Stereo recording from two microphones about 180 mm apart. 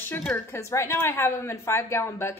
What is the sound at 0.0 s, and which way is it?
A woman's voice, 10° left (ahead or behind).